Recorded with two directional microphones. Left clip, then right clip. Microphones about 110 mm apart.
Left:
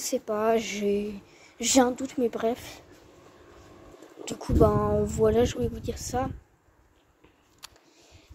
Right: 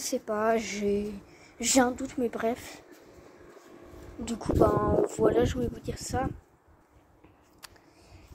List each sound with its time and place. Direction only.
0.0 s a woman's voice: 15° left (ahead or behind); by 2.3 s 30° left (ahead or behind)
2.3 s a woman's voice: 15° left (ahead or behind)
4.2 s speech: 25° left (ahead or behind)